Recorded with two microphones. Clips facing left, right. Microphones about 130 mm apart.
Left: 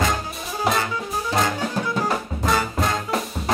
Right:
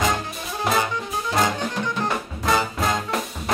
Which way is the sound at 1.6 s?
5° left (ahead or behind).